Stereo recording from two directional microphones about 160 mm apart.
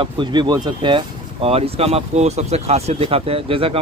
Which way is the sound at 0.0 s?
30° right (ahead or behind).